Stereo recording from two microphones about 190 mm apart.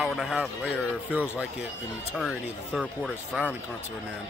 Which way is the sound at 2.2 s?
Centre (ahead or behind).